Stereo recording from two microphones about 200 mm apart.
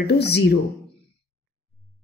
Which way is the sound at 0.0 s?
55° left (ahead or behind).